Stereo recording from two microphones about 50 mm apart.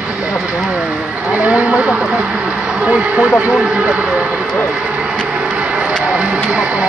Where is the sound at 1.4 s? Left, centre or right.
Right.